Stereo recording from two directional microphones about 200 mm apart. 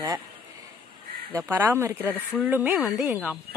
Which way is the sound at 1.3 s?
10° right (ahead or behind).